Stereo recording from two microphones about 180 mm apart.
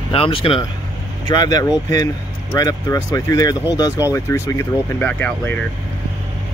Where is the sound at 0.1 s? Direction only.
30° left (ahead or behind).